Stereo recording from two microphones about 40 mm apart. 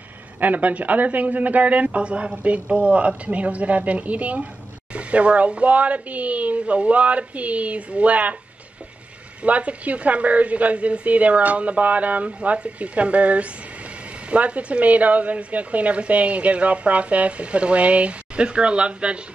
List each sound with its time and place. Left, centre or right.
0.4 s speech: right
9.4 s speech: right
12.3 s speech: right